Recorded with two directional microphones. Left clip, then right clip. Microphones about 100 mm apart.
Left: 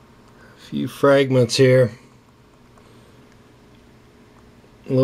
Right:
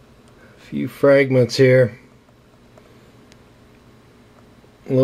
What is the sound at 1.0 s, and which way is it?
Speech, 20° left (ahead or behind).